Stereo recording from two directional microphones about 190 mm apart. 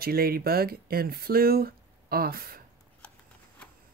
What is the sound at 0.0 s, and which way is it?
A woman's voice, 55° right (ahead or behind).